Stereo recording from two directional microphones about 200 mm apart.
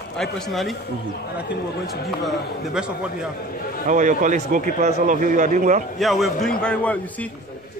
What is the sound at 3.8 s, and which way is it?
A man's voice, 40° right (ahead or behind).